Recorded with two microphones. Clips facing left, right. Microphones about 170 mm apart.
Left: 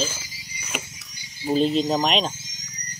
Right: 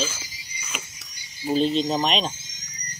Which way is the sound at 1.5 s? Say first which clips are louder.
Left 1 dB; 5° left (ahead or behind).